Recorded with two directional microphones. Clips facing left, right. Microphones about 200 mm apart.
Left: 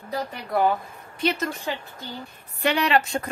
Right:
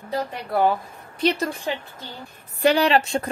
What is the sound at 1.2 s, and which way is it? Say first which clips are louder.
Speech: right 3 dB; 35° right (ahead or behind).